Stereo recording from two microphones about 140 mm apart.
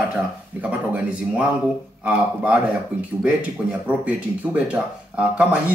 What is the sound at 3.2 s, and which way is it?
Speech, 10° right (ahead or behind).